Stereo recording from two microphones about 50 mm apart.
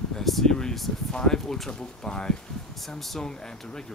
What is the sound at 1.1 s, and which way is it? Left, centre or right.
Speech, centre.